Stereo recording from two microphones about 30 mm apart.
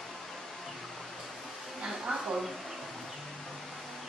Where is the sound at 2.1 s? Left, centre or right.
Right.